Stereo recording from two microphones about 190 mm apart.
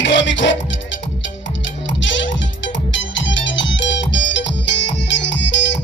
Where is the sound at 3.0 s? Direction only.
75° left (ahead or behind).